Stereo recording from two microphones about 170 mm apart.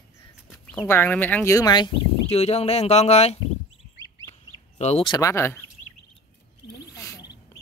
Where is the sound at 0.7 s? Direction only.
10° left (ahead or behind).